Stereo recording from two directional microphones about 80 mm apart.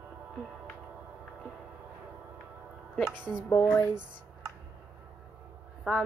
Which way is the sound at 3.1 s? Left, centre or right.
Centre.